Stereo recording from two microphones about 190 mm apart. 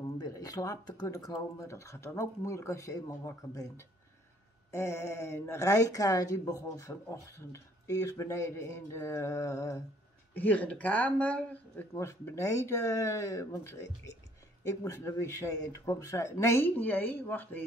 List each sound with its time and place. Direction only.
0.0 s speech: 20° left (ahead or behind)